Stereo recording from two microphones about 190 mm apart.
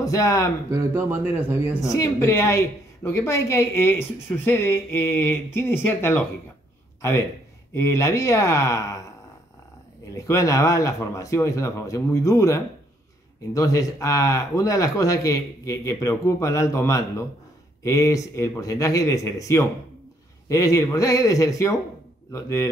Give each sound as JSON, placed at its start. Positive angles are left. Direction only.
{"t": 0.0, "sound": "speech", "side_deg": 20}
{"t": 0.7, "sound": "a man's voice", "side_deg": -15}
{"t": 1.8, "sound": "speech", "side_deg": 15}
{"t": 10.1, "sound": "speech", "side_deg": 15}